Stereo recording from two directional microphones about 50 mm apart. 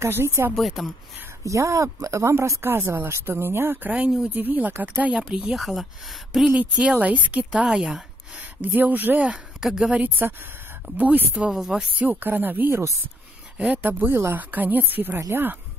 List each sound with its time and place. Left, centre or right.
0.0 s speech: right
0.6 s speech: centre
1.4 s speech: right
2.6 s speech: right
4.3 s speech: right
5.0 s speech: centre
5.5 s speech: centre
6.5 s speech: right
7.6 s a woman's voice: centre
8.4 s speech: right
9.6 s speech: centre
9.9 s speech: right
13.8 s speech: right